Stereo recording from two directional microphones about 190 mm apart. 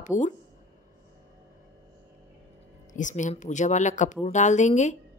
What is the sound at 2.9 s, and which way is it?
Speech, 40° left (ahead or behind).